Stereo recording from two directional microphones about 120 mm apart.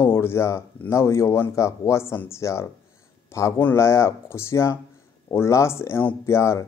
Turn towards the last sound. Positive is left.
turn(degrees=20)  # may be behind; listen again after turning